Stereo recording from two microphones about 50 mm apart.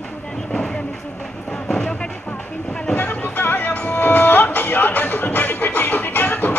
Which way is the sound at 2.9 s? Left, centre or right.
Left.